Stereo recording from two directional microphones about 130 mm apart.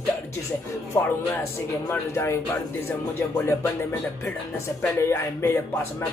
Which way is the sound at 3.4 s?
20° left (ahead or behind).